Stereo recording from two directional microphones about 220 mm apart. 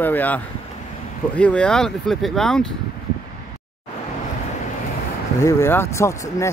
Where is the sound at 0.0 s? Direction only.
10° left (ahead or behind).